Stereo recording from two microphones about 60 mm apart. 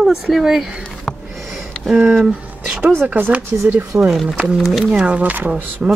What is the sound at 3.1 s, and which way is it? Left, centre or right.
Speech, right.